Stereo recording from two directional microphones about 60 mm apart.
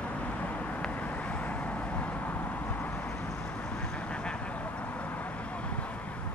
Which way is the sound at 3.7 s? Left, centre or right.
Centre.